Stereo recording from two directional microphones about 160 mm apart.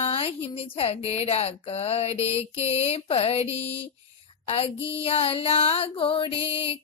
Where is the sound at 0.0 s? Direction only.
35° left (ahead or behind).